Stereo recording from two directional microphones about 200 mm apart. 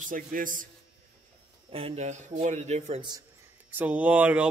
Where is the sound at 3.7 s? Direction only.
10° right (ahead or behind).